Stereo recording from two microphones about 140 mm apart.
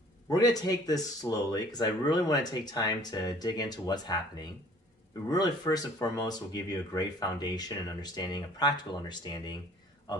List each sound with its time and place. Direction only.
0.3 s speech: 25° left (ahead or behind)